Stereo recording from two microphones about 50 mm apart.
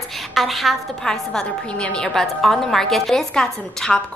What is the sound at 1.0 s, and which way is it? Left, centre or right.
A woman's voice, centre.